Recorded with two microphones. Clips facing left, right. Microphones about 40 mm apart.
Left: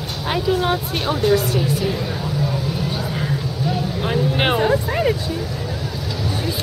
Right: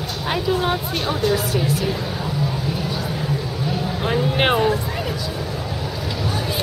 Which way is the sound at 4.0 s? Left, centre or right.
Centre.